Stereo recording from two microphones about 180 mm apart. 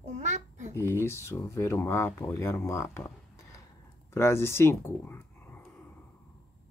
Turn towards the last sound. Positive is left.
turn(degrees=10)  # may be behind; listen again after turning